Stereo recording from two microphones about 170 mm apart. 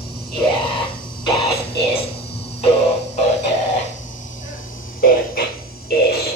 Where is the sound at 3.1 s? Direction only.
40° left (ahead or behind).